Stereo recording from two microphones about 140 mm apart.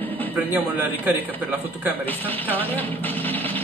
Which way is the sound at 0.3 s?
15° right (ahead or behind).